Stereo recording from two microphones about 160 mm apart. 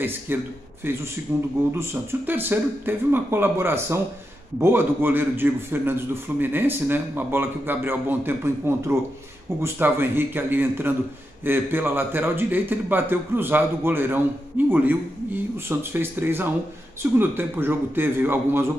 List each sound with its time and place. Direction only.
0.3 s a man's voice: 15° right (ahead or behind)